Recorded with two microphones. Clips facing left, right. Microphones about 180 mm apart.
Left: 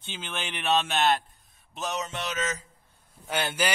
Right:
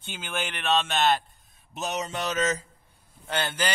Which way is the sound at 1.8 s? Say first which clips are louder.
Right 1 dB; 30° right (ahead or behind).